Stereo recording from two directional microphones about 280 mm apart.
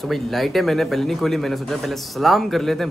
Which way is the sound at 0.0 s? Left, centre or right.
Centre.